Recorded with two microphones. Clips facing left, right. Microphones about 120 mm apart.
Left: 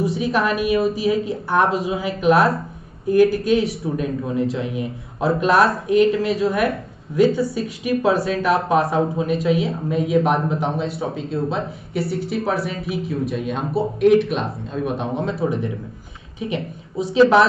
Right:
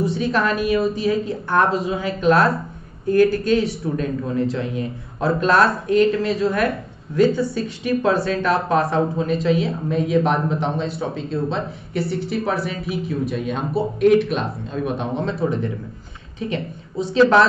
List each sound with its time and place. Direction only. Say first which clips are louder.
0.0 s speech: even; 5° left (ahead or behind)